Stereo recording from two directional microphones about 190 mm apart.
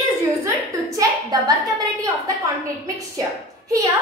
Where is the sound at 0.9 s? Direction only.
20° right (ahead or behind).